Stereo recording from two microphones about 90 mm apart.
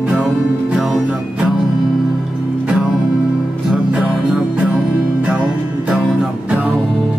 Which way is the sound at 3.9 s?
15° right (ahead or behind).